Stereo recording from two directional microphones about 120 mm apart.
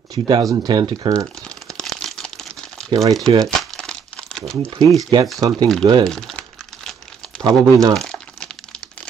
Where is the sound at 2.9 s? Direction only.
30° right (ahead or behind).